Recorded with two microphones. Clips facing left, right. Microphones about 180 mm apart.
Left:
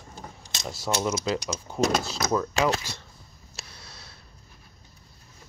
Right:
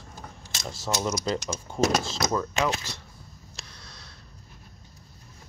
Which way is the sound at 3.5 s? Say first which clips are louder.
Left 2 dB; 5° left (ahead or behind).